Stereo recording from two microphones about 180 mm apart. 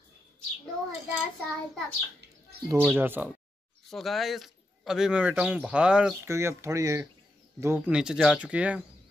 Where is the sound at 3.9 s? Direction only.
Centre (ahead or behind).